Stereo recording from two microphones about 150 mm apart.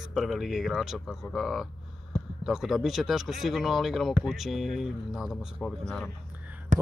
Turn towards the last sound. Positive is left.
turn(degrees=-55)  # may be behind; listen again after turning